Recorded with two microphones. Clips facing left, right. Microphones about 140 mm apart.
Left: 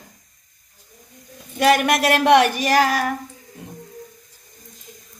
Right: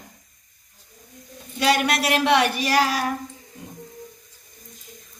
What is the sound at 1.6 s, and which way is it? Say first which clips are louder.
Child singing: left 4 dB; 50° left (ahead or behind).